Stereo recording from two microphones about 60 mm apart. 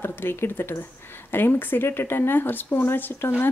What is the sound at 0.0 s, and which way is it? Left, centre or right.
Speech, left.